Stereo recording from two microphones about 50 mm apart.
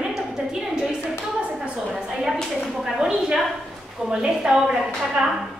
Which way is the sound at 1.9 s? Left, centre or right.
Centre.